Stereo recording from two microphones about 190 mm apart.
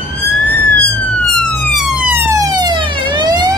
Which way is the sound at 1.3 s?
5° right (ahead or behind).